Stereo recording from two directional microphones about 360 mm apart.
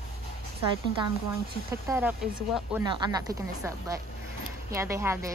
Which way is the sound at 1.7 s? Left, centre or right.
Centre.